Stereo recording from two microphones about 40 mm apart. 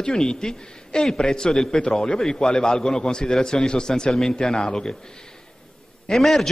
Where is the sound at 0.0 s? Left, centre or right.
Centre.